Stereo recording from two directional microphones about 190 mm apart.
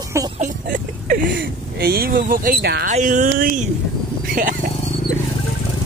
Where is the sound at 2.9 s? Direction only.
40° right (ahead or behind).